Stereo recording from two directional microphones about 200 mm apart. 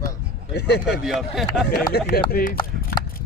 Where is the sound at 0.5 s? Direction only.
55° left (ahead or behind).